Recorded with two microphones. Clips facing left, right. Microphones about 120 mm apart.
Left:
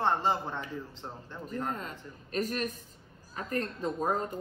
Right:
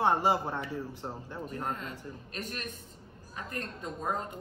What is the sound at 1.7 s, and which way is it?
Speech, 40° left (ahead or behind).